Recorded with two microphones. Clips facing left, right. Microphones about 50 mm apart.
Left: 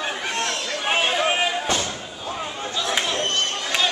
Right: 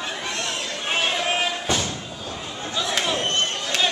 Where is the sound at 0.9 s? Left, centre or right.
Centre.